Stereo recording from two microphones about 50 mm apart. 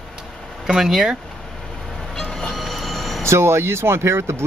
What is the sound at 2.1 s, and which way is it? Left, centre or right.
Train, centre.